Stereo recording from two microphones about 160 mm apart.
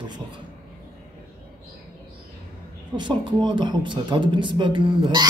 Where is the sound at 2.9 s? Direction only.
30° right (ahead or behind).